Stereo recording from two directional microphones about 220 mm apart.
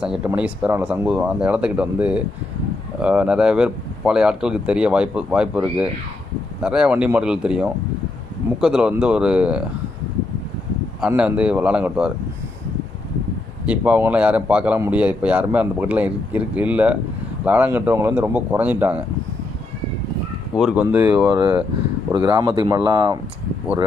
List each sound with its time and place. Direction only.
0.0 s speech: 5° right (ahead or behind)
11.0 s speech: 5° right (ahead or behind)
13.7 s a man's voice: 5° right (ahead or behind)
20.5 s a man's voice: 5° right (ahead or behind)
22.2 s speech: 20° right (ahead or behind)